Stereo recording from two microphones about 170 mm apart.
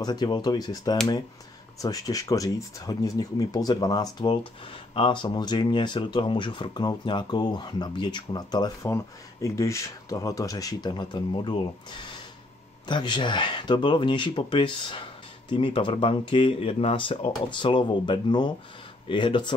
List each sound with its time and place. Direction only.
0.0 s speech: 25° left (ahead or behind)